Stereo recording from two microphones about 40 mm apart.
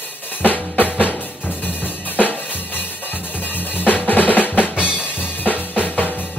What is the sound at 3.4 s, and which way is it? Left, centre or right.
Drum kit, left.